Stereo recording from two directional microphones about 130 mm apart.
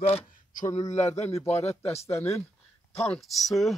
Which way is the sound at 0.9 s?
60° left (ahead or behind).